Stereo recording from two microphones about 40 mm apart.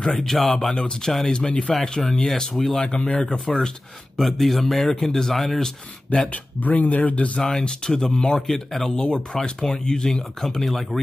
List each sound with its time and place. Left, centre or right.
0.1 s speech: centre
0.7 s speech: left
1.7 s speech: centre
2.9 s speech: left
4.4 s speech: centre
6.3 s speech: left
7.4 s speech: centre
8.4 s speech: centre
10.6 s speech: centre